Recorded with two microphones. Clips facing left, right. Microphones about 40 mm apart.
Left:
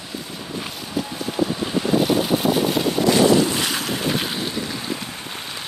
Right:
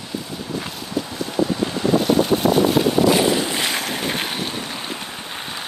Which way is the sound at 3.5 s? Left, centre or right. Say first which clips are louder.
Right 1 dB; right.